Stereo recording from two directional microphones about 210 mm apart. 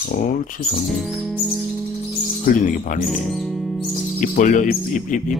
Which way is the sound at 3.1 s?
Centre (ahead or behind).